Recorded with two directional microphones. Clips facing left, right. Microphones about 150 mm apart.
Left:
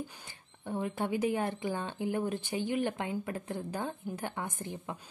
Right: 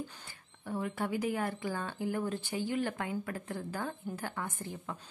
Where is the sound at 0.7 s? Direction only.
20° left (ahead or behind).